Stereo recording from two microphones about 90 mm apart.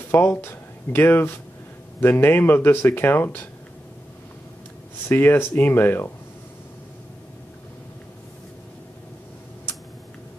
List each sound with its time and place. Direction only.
0.1 s speech: 25° left (ahead or behind)
5.0 s speech: 25° left (ahead or behind)